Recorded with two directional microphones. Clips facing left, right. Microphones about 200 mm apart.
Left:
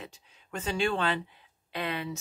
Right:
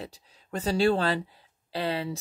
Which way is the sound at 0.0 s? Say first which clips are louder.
Right 5 dB; 35° right (ahead or behind).